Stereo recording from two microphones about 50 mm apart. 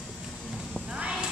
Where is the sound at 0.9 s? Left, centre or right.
Centre.